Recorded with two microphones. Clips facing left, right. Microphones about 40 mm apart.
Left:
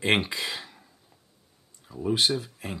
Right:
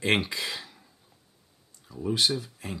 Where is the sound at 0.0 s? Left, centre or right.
Centre.